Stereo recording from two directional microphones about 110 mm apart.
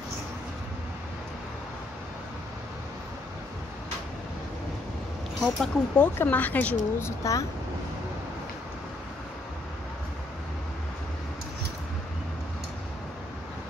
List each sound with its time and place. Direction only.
5.4 s speech: 5° left (ahead or behind)
6.1 s a woman's voice: 15° left (ahead or behind)